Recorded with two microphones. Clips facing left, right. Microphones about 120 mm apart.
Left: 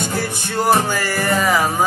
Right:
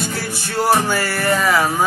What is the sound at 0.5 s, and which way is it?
Music, centre (ahead or behind).